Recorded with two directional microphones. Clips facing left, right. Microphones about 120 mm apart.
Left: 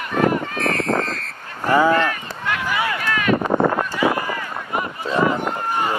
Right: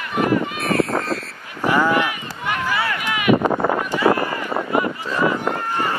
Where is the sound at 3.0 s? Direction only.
10° right (ahead or behind).